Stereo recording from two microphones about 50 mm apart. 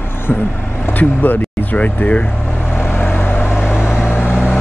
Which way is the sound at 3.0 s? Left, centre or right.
Left.